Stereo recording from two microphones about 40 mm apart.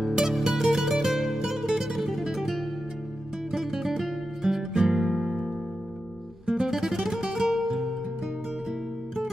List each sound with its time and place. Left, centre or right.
0.0 s music: centre
3.5 s music: centre
6.4 s guitar: centre
6.7 s music: centre